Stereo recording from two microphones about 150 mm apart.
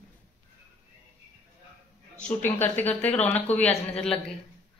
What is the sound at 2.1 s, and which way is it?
Speech, 10° left (ahead or behind).